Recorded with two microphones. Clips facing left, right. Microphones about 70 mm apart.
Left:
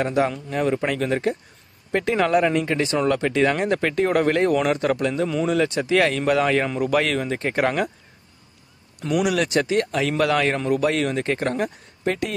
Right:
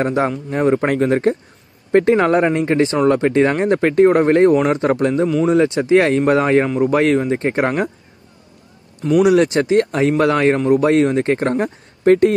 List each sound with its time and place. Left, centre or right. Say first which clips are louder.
0.0 s speech: right 3 dB; right
9.2 s speech: right 8 dB; right